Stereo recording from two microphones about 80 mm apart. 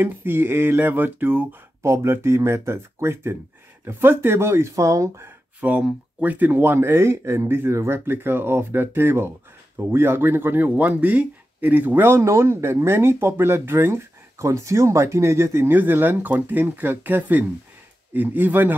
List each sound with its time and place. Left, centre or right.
0.0 s speech: right
1.8 s speech: right
5.6 s speech: centre